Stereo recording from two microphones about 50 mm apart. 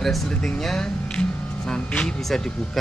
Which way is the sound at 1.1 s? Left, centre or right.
Centre.